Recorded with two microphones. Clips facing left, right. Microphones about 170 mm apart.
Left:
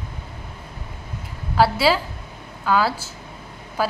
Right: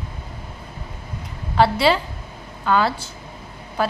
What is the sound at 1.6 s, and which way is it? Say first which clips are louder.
A woman's voice: right 1 dB; 5° left (ahead or behind).